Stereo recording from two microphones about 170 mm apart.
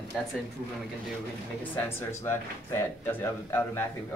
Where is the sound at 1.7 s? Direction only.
15° left (ahead or behind).